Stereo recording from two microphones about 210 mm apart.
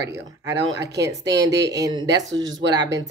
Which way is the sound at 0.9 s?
15° right (ahead or behind).